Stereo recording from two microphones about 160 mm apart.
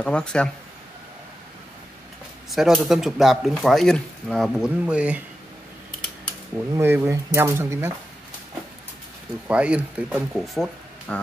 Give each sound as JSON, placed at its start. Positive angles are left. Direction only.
{"t": 0.0, "sound": "speech", "side_deg": 5}
{"t": 2.5, "sound": "speech", "side_deg": 0}
{"t": 6.5, "sound": "speech", "side_deg": -15}
{"t": 9.5, "sound": "speech", "side_deg": -5}